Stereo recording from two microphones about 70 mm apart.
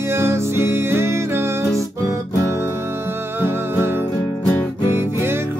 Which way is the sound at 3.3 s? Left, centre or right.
Right.